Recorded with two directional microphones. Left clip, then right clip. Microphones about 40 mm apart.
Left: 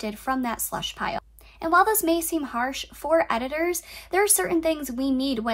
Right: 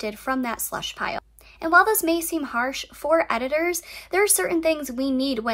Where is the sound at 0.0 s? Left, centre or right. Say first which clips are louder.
Right 1 dB; right.